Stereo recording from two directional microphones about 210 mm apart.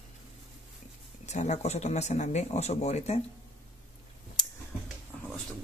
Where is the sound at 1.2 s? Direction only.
35° left (ahead or behind).